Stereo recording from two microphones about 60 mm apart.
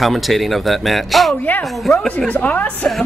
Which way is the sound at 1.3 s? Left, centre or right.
Left.